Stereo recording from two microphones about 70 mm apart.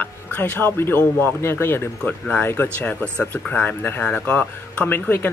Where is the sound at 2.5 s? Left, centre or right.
Left.